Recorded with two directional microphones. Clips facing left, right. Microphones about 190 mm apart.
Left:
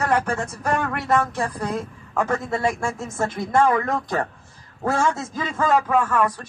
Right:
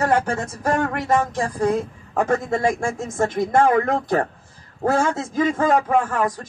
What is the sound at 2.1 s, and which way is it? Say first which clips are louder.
A man's voice: right 3 dB; 30° right (ahead or behind).